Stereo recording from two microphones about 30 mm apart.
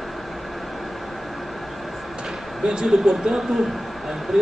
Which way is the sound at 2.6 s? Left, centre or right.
Right.